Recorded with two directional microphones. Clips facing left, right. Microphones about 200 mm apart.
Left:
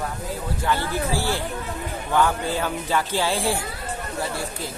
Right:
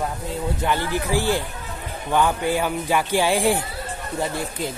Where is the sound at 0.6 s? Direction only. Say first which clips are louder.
Left 1 dB; 15° right (ahead or behind).